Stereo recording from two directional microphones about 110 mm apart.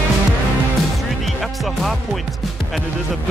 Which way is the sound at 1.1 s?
Centre (ahead or behind).